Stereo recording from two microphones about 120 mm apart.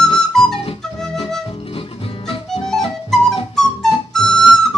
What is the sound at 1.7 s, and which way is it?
Music, 50° left (ahead or behind).